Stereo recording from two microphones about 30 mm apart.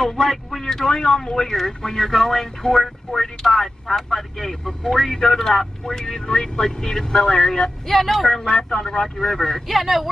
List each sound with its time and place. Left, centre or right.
0.7 s a man's voice: centre
5.1 s a man's voice: centre
6.3 s a man's voice: left
7.9 s speech: centre
8.5 s a man's voice: left
9.7 s speech: centre